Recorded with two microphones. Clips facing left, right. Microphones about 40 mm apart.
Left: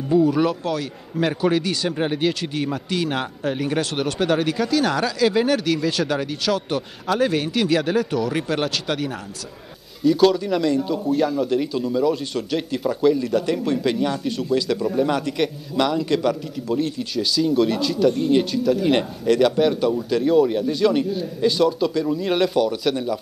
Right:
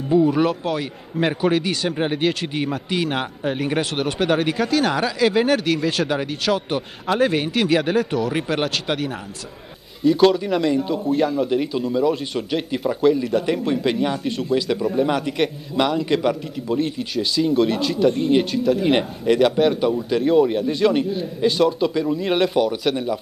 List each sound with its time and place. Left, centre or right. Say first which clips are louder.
0.1 s speech: right 1 dB; centre